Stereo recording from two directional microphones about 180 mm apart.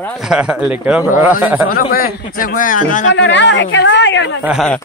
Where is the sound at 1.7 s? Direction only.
55° left (ahead or behind).